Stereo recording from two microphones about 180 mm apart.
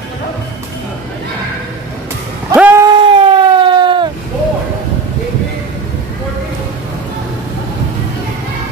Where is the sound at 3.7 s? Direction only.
25° right (ahead or behind).